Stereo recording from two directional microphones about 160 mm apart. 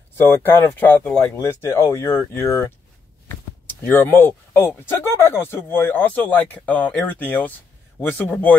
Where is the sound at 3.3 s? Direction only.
10° left (ahead or behind).